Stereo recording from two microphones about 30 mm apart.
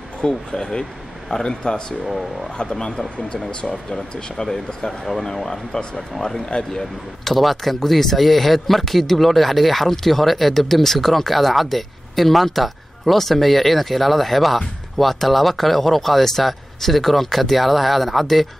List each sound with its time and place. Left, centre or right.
0.2 s speech: left
5.0 s speech: centre